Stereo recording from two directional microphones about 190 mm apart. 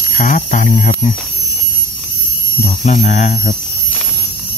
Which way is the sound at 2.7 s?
40° left (ahead or behind).